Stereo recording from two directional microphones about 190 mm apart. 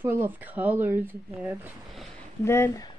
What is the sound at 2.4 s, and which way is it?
Speech, 15° left (ahead or behind).